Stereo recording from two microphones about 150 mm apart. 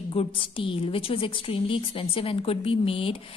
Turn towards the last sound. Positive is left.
turn(degrees=35)  # may be behind; listen again after turning